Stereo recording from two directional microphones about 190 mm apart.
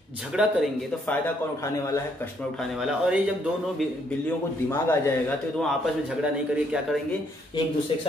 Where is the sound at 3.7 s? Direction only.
10° left (ahead or behind).